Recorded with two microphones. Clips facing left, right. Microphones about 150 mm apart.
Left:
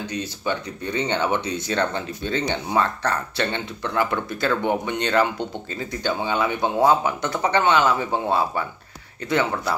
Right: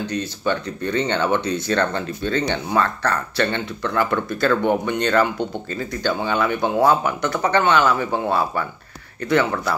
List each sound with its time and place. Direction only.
0.1 s speech: 10° left (ahead or behind)